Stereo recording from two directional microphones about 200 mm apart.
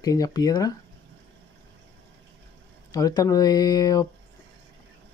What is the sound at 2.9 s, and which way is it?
Speech, 20° left (ahead or behind).